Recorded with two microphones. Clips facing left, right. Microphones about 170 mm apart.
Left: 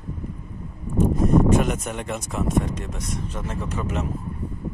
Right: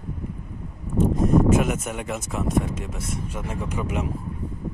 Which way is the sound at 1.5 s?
5° right (ahead or behind).